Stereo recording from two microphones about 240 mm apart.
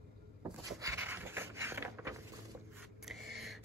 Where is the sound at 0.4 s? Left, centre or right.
Centre.